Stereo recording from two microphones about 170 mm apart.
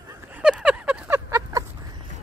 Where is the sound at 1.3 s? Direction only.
20° right (ahead or behind).